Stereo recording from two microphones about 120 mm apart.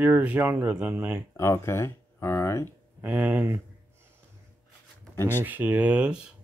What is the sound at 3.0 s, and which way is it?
Speech, 15° right (ahead or behind).